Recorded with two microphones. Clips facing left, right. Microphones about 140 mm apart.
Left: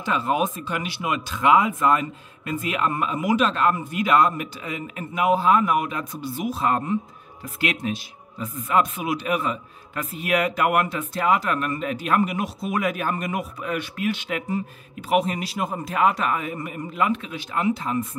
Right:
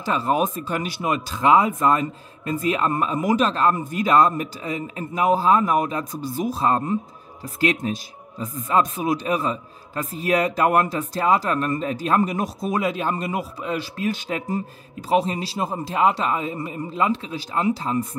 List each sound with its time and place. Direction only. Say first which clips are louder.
0.0 s speech: right 2 dB; 35° right (ahead or behind)